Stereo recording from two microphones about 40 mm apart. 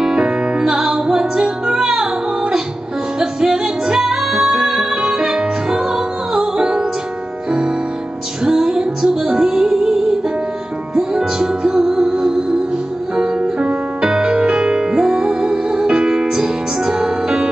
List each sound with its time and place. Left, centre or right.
0.0 s music: centre
3.2 s music: centre
8.5 s music: centre
11.0 s music: centre